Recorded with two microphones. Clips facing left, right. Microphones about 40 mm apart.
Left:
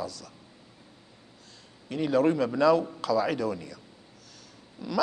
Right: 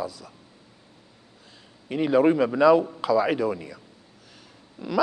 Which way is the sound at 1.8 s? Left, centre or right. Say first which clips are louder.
Right 4 dB; centre.